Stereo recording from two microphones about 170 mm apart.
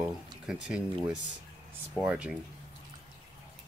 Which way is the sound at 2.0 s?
10° right (ahead or behind).